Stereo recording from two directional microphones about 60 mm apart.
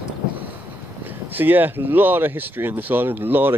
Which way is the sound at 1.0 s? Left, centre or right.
Right.